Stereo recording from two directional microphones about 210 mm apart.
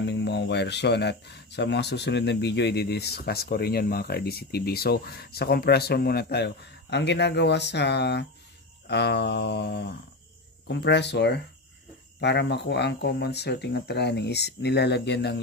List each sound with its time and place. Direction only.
0.0 s speech: 55° left (ahead or behind)